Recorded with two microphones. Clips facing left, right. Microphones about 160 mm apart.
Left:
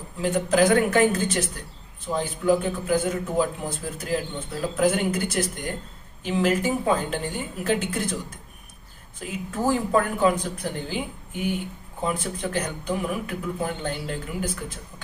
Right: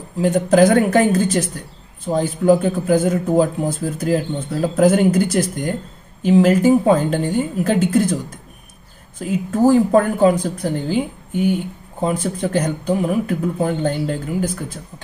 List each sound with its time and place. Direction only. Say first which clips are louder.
0.2 s speech: right 7 dB; 45° right (ahead or behind)
9.5 s speech: right 9 dB; 40° right (ahead or behind)